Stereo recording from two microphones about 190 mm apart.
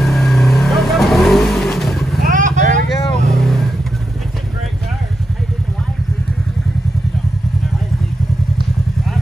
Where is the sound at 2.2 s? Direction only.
45° right (ahead or behind).